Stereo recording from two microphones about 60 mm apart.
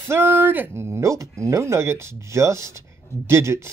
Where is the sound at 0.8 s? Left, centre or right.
Right.